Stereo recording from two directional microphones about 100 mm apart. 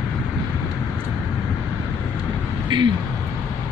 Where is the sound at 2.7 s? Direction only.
55° right (ahead or behind).